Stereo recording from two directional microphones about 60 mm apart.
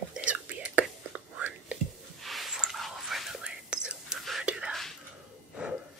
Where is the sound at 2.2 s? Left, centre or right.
Centre.